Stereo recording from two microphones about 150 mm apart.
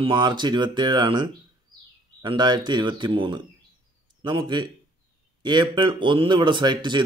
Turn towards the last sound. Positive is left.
turn(degrees=-30)  # may be behind; listen again after turning